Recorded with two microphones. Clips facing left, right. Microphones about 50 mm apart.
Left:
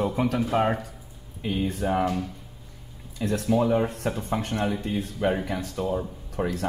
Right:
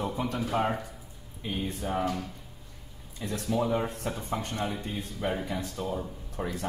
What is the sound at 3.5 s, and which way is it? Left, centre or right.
Speech, left.